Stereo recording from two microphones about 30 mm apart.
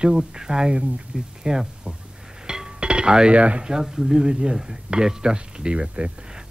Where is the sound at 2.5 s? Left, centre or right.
Right.